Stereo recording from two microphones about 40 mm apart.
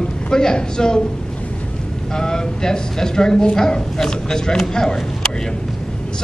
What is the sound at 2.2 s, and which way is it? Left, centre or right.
Speech, centre.